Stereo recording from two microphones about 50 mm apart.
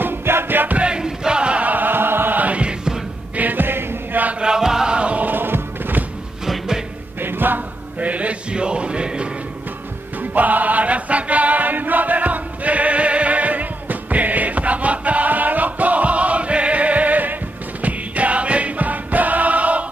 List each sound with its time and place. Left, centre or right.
0.0 s music: right
0.7 s music: centre
1.7 s music: right; by 3.0 s centre
3.3 s music: right
4.4 s chant: centre
5.2 s music: right
6.4 s music: centre
7.2 s chant: right; by 9.3 s centre
10.3 s music: right